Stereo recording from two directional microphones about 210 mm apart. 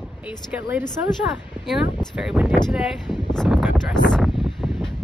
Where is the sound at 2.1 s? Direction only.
5° right (ahead or behind).